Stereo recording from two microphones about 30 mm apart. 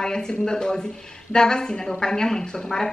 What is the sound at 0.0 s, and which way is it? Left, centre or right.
A woman's voice, left.